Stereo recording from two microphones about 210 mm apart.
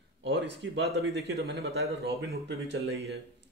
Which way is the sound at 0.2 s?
55° right (ahead or behind).